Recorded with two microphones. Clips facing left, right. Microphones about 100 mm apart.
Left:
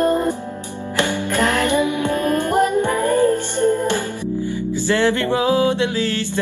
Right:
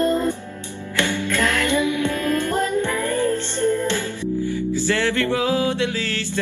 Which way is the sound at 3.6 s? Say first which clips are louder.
Left 3 dB; 45° left (ahead or behind).